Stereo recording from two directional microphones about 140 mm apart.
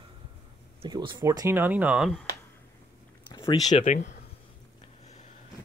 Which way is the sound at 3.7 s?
55° left (ahead or behind).